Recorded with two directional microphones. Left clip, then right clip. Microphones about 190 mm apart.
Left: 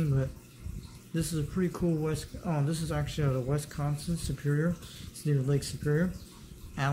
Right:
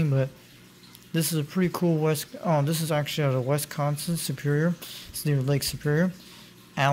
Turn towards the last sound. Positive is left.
turn(degrees=-35)  # may be behind; listen again after turning